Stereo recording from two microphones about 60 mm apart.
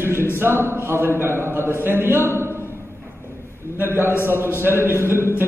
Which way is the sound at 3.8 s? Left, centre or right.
Right.